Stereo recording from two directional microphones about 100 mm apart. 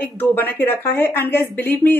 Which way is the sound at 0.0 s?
20° left (ahead or behind).